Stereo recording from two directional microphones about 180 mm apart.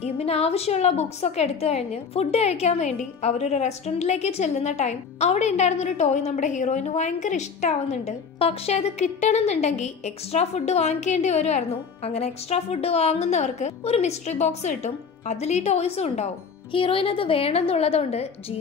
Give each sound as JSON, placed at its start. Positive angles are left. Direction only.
{"t": 0.0, "sound": "a woman's voice", "side_deg": 35}